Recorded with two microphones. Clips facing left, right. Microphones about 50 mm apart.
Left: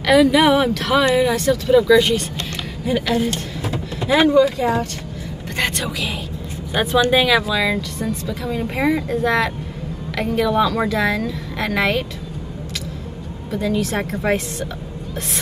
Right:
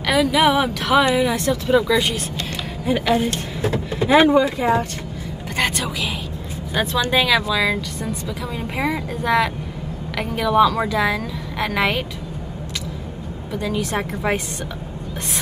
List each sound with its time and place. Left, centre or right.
0.0 s speech: centre
1.3 s speech: centre
2.8 s speech: centre
3.7 s vehicle: right
4.2 s speech: centre
5.6 s speech: centre
13.5 s speech: centre